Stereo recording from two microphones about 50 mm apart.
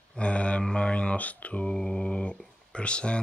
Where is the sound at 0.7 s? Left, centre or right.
Left.